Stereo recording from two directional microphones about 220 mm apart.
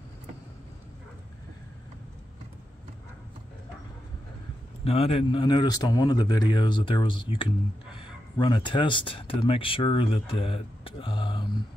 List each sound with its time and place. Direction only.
4.8 s speech: 25° left (ahead or behind)